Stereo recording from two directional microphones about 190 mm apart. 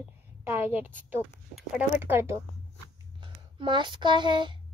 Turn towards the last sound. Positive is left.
turn(degrees=-25)  # may be behind; listen again after turning